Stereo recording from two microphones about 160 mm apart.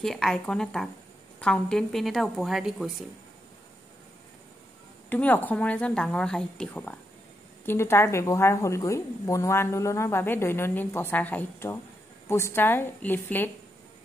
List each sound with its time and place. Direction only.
0.0 s a woman's voice: 5° left (ahead or behind)
5.1 s speech: 10° left (ahead or behind)